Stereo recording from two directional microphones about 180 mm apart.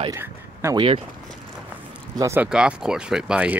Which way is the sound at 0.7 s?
30° right (ahead or behind).